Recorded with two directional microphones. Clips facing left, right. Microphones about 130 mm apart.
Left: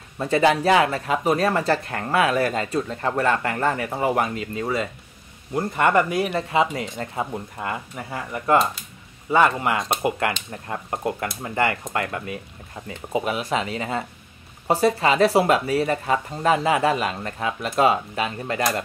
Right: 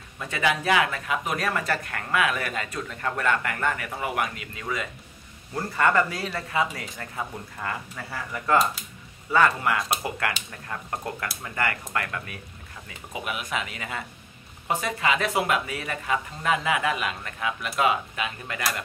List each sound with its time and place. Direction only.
0.2 s speech: 35° left (ahead or behind)
5.5 s speech: 20° left (ahead or behind)